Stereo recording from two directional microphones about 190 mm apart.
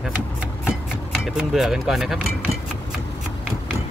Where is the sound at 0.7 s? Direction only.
Centre (ahead or behind).